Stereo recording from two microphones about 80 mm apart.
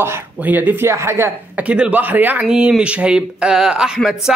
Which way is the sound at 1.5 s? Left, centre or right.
Centre.